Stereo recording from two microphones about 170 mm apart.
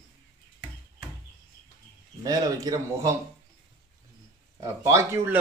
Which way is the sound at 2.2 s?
20° right (ahead or behind).